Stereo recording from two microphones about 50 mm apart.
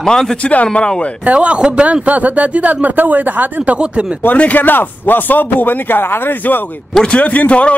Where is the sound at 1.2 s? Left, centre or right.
Right.